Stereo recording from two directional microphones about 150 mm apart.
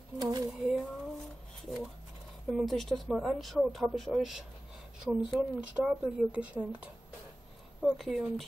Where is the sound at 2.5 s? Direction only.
Centre (ahead or behind).